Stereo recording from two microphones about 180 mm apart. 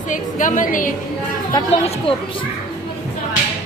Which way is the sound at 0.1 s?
45° left (ahead or behind).